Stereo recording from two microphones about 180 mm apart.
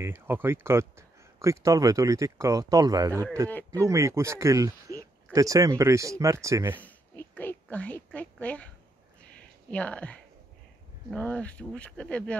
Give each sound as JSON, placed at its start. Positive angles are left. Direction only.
{"t": 0.0, "sound": "speech", "side_deg": -10}
{"t": 6.8, "sound": "a sound", "side_deg": 10}
{"t": 11.1, "sound": "speech", "side_deg": 5}